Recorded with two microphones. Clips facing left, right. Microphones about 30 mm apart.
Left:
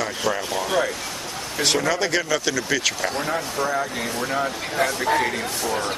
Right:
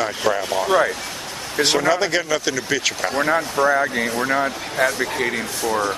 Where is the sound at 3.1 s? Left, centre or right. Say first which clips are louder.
Right 6 dB; right.